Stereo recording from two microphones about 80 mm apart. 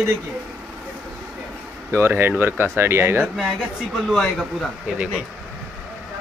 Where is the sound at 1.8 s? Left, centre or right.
Right.